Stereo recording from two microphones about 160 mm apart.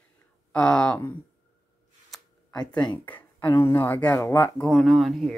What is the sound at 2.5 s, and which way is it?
Speech, 25° left (ahead or behind).